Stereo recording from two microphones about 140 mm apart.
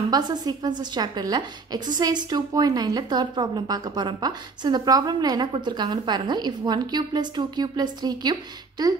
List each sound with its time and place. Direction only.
0.1 s a woman's voice: 30° right (ahead or behind)